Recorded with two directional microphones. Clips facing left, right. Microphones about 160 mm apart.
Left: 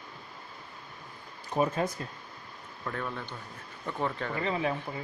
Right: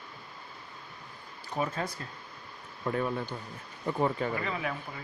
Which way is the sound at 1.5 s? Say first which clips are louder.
Left 4 dB; 20° left (ahead or behind).